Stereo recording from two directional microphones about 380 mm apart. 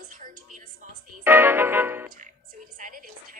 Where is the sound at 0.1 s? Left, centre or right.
Right.